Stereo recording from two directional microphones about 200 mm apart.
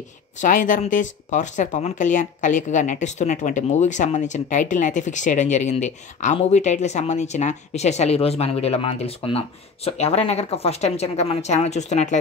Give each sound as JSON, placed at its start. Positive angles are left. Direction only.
{"t": 0.4, "sound": "speech", "side_deg": 40}